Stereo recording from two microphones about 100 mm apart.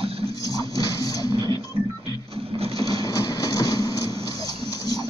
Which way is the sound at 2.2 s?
80° right.